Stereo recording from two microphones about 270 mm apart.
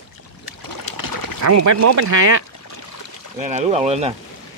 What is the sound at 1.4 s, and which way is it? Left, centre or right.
Speech, right.